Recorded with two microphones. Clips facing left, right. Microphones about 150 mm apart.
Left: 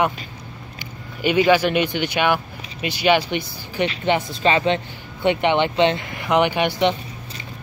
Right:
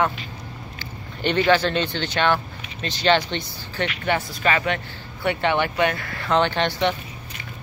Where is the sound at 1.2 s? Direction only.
10° left (ahead or behind).